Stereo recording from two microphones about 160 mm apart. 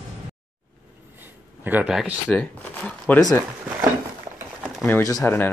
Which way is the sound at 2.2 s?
10° left (ahead or behind).